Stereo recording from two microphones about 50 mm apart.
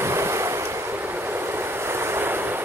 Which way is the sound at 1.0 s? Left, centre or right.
Right.